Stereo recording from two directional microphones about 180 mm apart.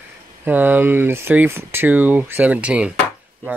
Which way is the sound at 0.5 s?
10° right (ahead or behind).